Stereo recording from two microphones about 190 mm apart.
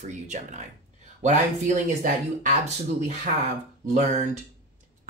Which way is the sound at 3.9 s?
35° right (ahead or behind).